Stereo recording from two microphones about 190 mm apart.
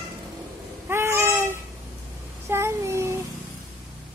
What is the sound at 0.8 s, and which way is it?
Baby cry, 15° right (ahead or behind).